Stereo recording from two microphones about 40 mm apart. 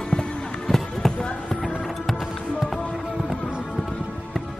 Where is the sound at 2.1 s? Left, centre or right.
Centre.